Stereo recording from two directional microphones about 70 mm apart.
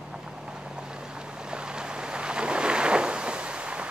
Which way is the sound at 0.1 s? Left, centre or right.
Centre.